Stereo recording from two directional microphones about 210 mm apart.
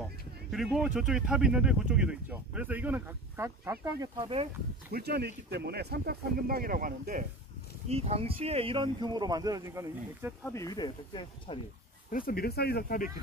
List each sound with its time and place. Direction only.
0.5 s speech: centre (ahead or behind); by 4.5 s 25° right (ahead or behind)
4.9 s speech: 50° right (ahead or behind)
7.9 s speech: 30° right (ahead or behind); by 10.3 s 15° right (ahead or behind)
10.4 s speech: 15° left (ahead or behind)
12.1 s speech: 45° left (ahead or behind)